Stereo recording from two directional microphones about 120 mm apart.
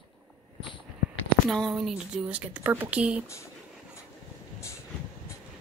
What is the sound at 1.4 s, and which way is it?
Speech, centre (ahead or behind).